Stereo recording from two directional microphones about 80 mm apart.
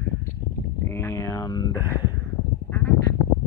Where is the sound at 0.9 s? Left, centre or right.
Left.